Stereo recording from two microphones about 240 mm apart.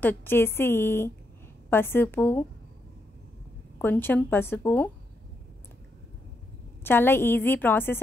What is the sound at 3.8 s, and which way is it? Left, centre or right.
A woman's voice, centre.